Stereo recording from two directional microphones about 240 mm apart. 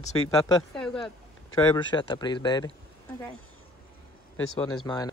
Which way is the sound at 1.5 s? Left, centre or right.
Centre.